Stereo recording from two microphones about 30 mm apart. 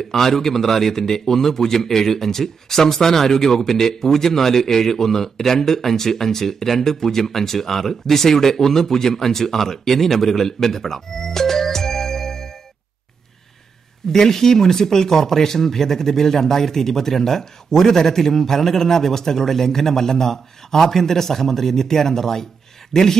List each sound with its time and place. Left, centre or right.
0.0 s speech: centre
14.1 s speech: centre